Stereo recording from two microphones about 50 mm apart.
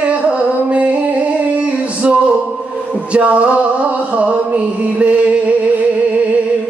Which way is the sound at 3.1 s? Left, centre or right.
Right.